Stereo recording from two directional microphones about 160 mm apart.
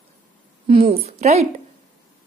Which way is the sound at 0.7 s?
35° right (ahead or behind).